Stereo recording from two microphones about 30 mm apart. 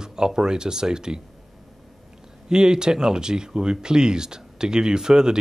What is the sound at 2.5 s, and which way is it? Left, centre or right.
A man's voice, right.